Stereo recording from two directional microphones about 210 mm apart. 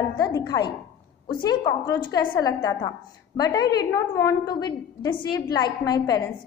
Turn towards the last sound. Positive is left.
turn(degrees=15)  # may be behind; listen again after turning